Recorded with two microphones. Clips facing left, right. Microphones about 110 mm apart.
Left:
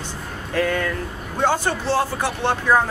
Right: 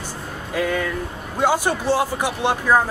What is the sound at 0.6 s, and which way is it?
Speech, 10° right (ahead or behind).